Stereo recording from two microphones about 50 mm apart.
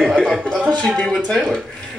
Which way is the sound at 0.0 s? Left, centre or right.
Centre.